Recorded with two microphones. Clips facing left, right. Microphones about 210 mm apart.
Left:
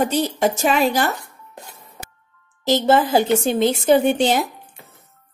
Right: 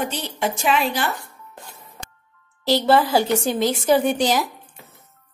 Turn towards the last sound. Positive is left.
turn(degrees=25)  # may be behind; listen again after turning